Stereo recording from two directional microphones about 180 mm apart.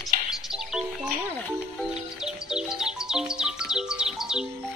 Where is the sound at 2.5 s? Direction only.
5° right (ahead or behind).